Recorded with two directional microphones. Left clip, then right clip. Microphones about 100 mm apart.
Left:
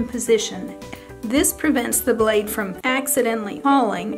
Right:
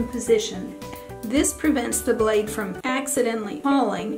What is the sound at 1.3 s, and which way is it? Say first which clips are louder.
A woman's voice: left 2 dB; 40° left (ahead or behind).